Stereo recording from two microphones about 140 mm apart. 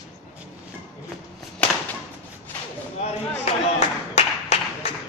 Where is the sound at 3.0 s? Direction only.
50° left (ahead or behind).